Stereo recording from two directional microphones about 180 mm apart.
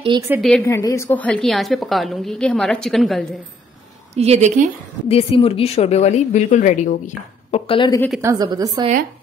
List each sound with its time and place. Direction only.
0.4 s a woman's voice: centre (ahead or behind)
0.7 s a woman's voice: 15° left (ahead or behind)
4.1 s a woman's voice: 35° right (ahead or behind)
5.0 s speech: 30° left (ahead or behind)
7.6 s speech: 30° left (ahead or behind)
8.2 s a woman's voice: 20° right (ahead or behind)